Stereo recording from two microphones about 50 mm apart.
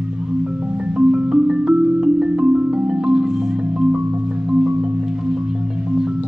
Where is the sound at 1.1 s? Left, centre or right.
Centre.